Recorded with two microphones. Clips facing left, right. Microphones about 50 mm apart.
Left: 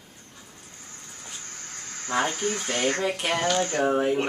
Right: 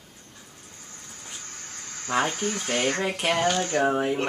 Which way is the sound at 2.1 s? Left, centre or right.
Centre.